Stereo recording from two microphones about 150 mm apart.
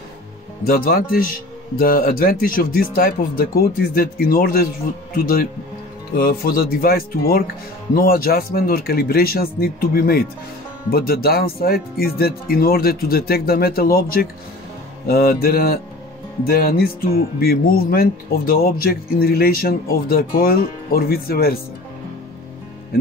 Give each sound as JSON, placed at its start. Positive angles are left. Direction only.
{"t": 0.7, "sound": "speech", "side_deg": 80}